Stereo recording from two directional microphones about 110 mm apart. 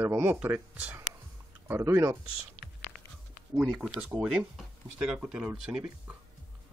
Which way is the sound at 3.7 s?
5° right (ahead or behind).